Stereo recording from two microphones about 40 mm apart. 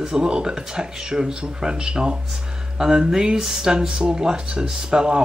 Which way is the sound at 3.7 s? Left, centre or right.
Centre.